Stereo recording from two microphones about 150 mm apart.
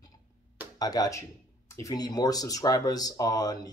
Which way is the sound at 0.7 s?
25° left (ahead or behind).